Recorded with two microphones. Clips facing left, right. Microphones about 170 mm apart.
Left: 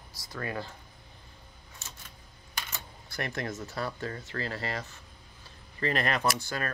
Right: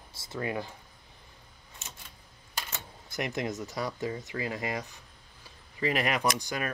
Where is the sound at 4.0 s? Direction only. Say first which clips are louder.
Right 2 dB; 15° right (ahead or behind).